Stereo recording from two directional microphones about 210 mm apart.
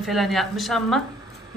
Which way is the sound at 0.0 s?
Centre (ahead or behind).